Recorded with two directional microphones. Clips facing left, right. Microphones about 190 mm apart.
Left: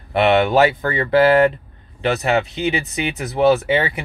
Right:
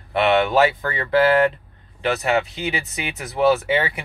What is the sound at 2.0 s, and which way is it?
Speech, 5° right (ahead or behind).